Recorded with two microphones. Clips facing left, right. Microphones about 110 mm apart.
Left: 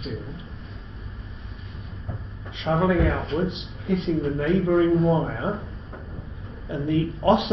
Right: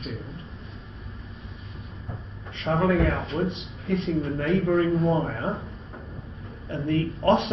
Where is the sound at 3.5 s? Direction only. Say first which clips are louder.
Left 1 dB; 10° left (ahead or behind).